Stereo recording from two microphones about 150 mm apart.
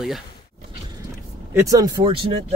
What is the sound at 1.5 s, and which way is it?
Speech, 20° right (ahead or behind).